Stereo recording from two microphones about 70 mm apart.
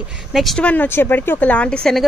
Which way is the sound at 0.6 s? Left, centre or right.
Centre.